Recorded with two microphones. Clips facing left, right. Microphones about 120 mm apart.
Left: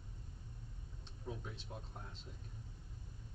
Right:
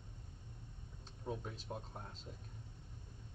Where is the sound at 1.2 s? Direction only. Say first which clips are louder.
Right 4 dB; 45° right (ahead or behind).